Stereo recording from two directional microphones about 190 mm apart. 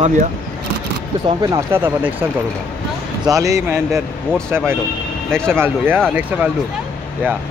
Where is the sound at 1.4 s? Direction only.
15° right (ahead or behind).